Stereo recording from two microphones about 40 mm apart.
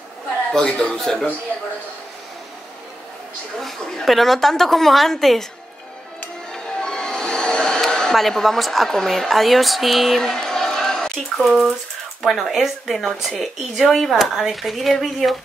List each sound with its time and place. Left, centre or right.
0.6 s a man's voice: left
0.9 s speech: centre
3.5 s a woman's voice: centre
6.5 s music: left
7.8 s a woman's voice: centre
11.3 s a woman's voice: centre